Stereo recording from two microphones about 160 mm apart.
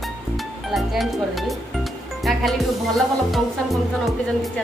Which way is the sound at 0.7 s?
Centre (ahead or behind).